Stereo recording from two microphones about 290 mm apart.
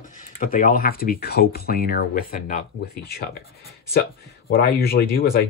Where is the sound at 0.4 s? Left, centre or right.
Left.